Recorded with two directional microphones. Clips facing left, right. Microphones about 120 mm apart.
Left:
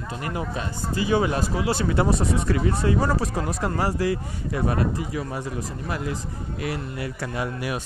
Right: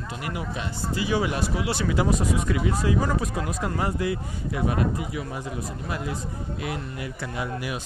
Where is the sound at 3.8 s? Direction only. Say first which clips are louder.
Left 3 dB; 80° left.